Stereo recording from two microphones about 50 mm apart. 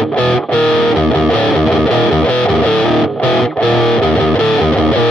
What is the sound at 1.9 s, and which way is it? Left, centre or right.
Music, centre.